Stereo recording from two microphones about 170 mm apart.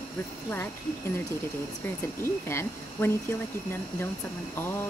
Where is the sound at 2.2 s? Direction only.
15° left (ahead or behind).